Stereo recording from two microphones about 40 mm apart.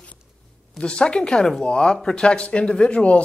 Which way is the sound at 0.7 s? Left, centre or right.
Left.